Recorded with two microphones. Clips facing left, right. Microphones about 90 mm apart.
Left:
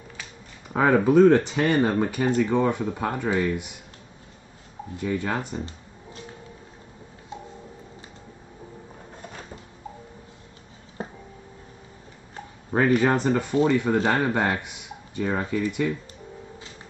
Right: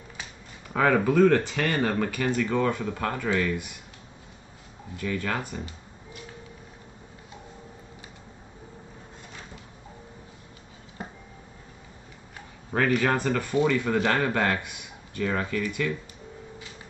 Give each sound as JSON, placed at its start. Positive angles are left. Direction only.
{"t": 0.7, "sound": "speech", "side_deg": 20}
{"t": 5.0, "sound": "speech", "side_deg": 15}
{"t": 12.7, "sound": "speech", "side_deg": 20}